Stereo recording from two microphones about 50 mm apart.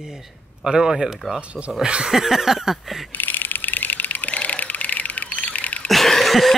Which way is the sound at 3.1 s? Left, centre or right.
Left.